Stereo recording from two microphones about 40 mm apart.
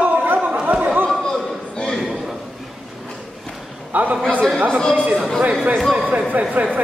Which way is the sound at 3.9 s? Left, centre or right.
Right.